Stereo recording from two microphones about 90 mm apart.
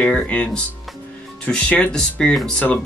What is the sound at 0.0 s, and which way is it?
Speech, 15° left (ahead or behind).